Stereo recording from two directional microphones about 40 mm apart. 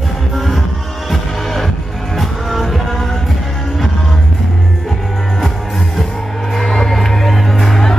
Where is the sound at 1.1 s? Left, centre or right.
Centre.